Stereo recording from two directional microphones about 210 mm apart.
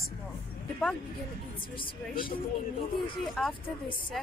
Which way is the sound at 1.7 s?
25° left (ahead or behind).